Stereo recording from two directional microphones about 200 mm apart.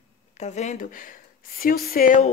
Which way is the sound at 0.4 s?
35° left (ahead or behind).